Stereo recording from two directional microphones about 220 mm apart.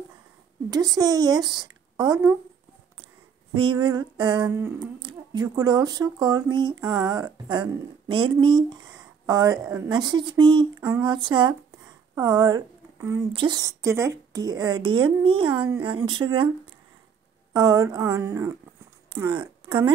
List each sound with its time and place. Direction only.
0.7 s speech: 15° right (ahead or behind)
3.5 s speech: 20° right (ahead or behind)
17.5 s a woman's voice: 15° right (ahead or behind)